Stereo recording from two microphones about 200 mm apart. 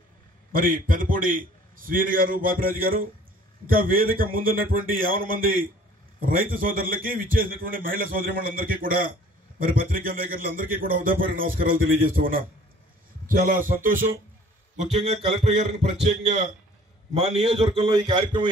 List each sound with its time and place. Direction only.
0.5 s a man's voice: 45° right (ahead or behind)
14.8 s a man's voice: 30° right (ahead or behind)